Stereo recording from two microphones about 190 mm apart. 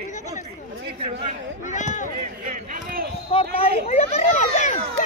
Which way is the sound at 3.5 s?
35° left (ahead or behind).